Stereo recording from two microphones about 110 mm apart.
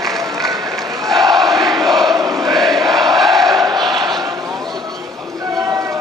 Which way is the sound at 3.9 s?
40° right (ahead or behind).